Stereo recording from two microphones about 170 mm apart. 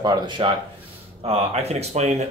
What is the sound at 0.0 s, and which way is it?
Speech, 25° right (ahead or behind).